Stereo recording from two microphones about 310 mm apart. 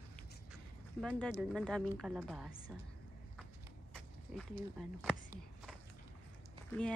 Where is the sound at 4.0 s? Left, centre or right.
Centre.